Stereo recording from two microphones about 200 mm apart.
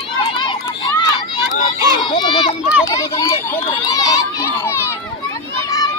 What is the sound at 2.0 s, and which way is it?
A child's voice, 25° left (ahead or behind).